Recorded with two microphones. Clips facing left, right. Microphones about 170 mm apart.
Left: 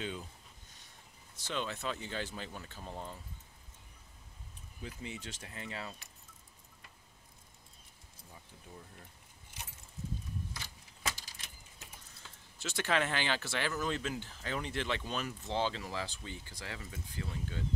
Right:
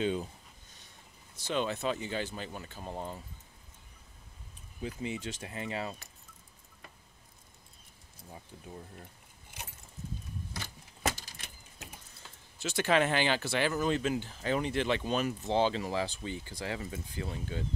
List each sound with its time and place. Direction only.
1.5 s speech: 15° right (ahead or behind)
2.9 s speech: 30° right (ahead or behind)
4.8 s speech: 15° right (ahead or behind)
10.5 s keys jangling: 60° right (ahead or behind)
12.6 s speech: 15° right (ahead or behind)